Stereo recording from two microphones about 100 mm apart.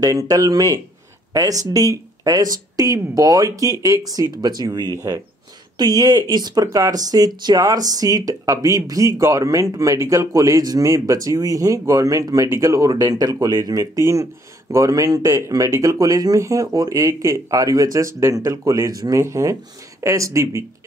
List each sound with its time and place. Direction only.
0.0 s speech: 35° right (ahead or behind)